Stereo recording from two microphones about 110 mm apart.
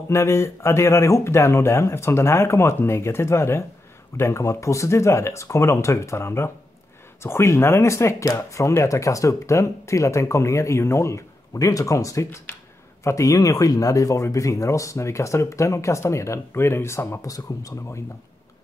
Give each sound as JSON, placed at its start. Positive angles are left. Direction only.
{"t": 0.1, "sound": "speech", "side_deg": 25}